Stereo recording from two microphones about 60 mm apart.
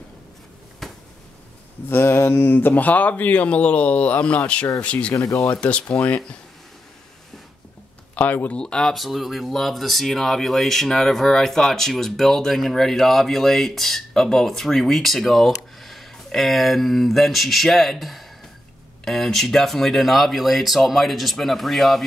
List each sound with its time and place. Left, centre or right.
0.8 s a sound: centre
1.9 s speech: left
5.1 s speech: left
5.5 s speech: left
8.1 s speech: left
8.5 s speech: centre
8.9 s speech: centre